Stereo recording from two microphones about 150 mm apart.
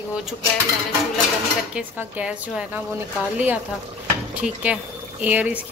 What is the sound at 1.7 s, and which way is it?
Speech, 5° right (ahead or behind).